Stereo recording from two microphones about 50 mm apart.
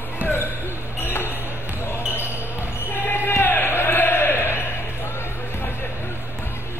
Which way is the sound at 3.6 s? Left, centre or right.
Left.